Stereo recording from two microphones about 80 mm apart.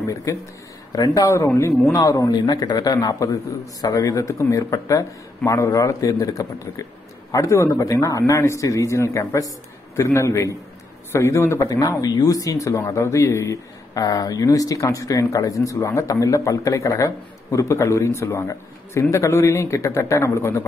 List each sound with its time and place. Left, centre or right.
0.0 s a man's voice: left
1.5 s a man's voice: left
2.0 s a man's voice: left